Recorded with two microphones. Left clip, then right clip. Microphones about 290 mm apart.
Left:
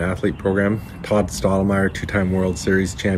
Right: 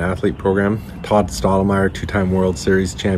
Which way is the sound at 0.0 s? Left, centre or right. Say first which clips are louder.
Right 3 dB; centre.